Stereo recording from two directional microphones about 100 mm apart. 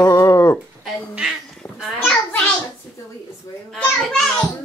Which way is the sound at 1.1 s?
Centre (ahead or behind).